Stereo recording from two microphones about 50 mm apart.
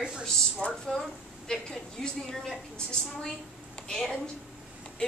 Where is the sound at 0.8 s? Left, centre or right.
Centre.